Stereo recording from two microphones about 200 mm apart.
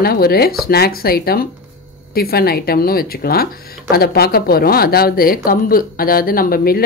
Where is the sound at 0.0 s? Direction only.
50° left (ahead or behind).